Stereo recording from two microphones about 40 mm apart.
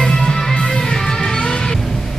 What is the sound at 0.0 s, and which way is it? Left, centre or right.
Music, centre.